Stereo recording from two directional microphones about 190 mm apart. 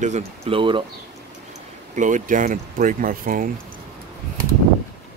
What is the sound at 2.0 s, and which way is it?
Speech, 40° right (ahead or behind).